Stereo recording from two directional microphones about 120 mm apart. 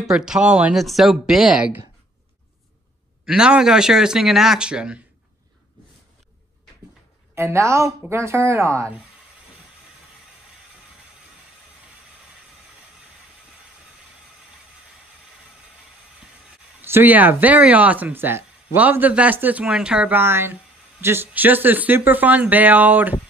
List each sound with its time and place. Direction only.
0.0 s speech: 5° right (ahead or behind)
3.3 s speech: 5° right (ahead or behind)
7.3 s a woman's voice: 25° right (ahead or behind)
16.8 s speech: 15° right (ahead or behind)